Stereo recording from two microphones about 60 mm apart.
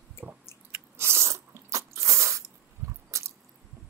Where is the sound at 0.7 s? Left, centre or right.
Right.